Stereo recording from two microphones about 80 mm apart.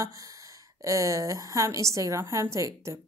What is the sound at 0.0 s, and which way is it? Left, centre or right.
A woman's voice, right.